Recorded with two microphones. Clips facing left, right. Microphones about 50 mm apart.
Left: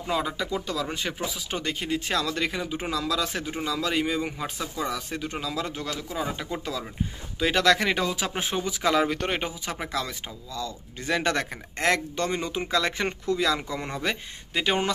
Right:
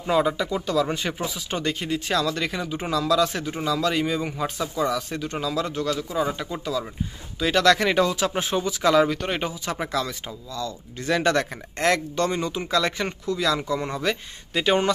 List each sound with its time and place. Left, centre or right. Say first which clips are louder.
0.1 s speech: right 6 dB; centre
1.9 s speech: right 2 dB; centre
4.8 s speech: right 5 dB; centre
6.7 s speech: right 6 dB; left
7.3 s speech: right 2 dB; left
7.6 s speech: right 5 dB; centre; by 13.4 s left
13.4 s speech: right 6 dB; centre